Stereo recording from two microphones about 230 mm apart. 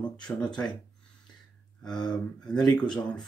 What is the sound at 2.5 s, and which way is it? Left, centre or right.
Speech, centre.